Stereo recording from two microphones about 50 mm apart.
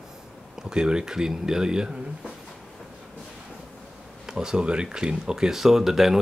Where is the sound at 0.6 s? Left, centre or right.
Centre.